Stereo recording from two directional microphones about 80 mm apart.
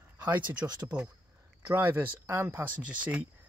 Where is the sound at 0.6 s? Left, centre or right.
Right.